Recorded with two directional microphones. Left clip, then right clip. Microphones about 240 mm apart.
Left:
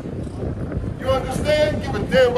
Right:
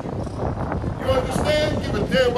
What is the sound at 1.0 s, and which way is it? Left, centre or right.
Speech, centre.